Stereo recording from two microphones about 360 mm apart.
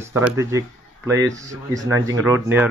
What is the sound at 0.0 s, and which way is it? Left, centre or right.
Speech, centre.